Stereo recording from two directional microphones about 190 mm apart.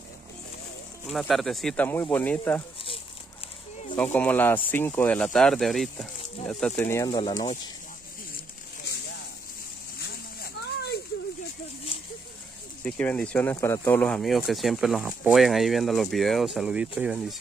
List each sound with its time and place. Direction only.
1.0 s speech: centre (ahead or behind)
3.9 s speech: 10° left (ahead or behind)
9.9 s a sound: 60° left (ahead or behind)
12.8 s speech: 5° left (ahead or behind)